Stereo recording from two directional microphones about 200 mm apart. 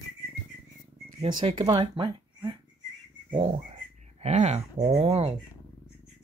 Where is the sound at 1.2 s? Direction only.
25° right (ahead or behind).